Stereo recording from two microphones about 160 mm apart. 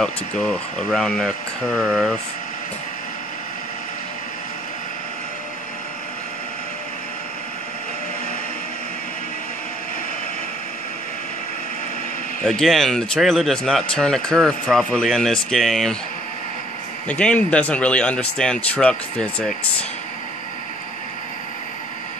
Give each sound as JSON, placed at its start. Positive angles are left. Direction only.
{"t": 0.0, "sound": "speech", "side_deg": 5}
{"t": 12.4, "sound": "speech", "side_deg": 0}
{"t": 17.1, "sound": "speech", "side_deg": 10}